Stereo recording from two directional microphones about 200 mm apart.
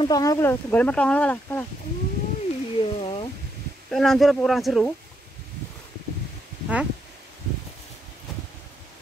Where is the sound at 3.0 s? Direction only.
30° left (ahead or behind).